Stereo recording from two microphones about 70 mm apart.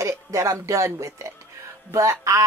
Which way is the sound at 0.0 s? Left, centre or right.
Right.